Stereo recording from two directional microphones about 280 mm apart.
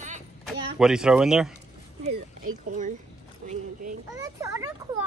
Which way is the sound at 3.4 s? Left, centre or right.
Right.